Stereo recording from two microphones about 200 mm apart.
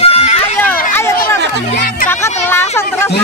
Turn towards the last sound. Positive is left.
turn(degrees=10)  # may be behind; listen again after turning